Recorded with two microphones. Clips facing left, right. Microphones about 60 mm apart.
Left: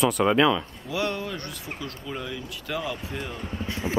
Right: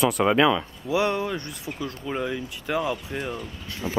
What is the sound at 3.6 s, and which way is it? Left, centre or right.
Speech, left.